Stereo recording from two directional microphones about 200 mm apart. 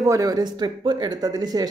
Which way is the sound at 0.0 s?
15° right (ahead or behind).